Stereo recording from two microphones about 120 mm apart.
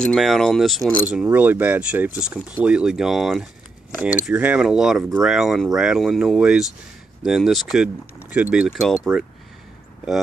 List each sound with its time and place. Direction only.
0.0 s speech: centre (ahead or behind)
1.0 s speech: 10° right (ahead or behind)
4.3 s speech: 15° right (ahead or behind)
8.7 s speech: 5° left (ahead or behind)